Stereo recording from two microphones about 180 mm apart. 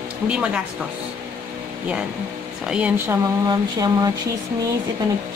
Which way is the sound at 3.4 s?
20° right (ahead or behind).